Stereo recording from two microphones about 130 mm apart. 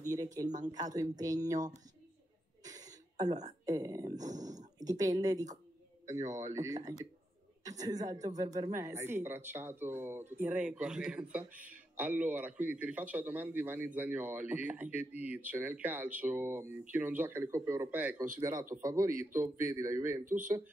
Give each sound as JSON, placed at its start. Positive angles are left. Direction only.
{"t": 0.2, "sound": "speech", "side_deg": -25}
{"t": 2.6, "sound": "a sound", "side_deg": -30}
{"t": 3.6, "sound": "speech", "side_deg": -30}
{"t": 4.2, "sound": "speech", "side_deg": -70}
{"t": 4.7, "sound": "a man's voice", "side_deg": -30}
{"t": 18.4, "sound": "speech", "side_deg": -35}
{"t": 20.2, "sound": "speech", "side_deg": -85}